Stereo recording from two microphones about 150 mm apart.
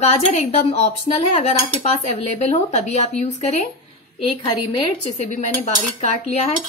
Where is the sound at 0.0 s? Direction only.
45° left (ahead or behind).